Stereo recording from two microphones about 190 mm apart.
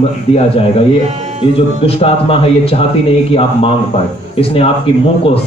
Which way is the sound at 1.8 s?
30° left (ahead or behind).